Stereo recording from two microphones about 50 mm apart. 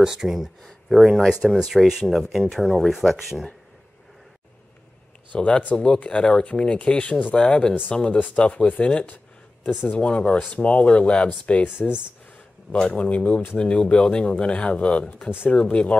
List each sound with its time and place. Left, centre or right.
0.0 s speech: centre
5.3 s speech: left
9.1 s a sound: left
10.0 s speech: left